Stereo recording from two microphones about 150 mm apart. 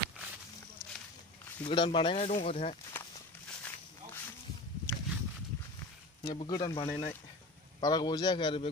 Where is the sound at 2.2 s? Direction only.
50° left (ahead or behind).